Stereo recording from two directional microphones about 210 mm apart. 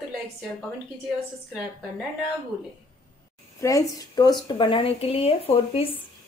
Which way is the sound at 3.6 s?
15° left (ahead or behind).